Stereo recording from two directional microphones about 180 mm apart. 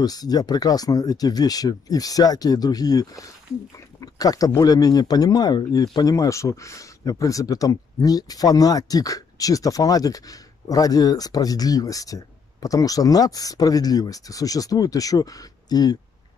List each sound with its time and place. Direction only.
0.0 s speech: 20° left (ahead or behind)